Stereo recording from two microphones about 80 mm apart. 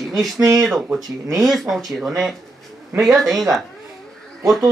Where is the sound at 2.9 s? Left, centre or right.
Centre.